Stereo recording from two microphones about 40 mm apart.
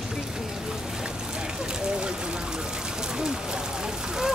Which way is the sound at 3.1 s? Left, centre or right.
Centre.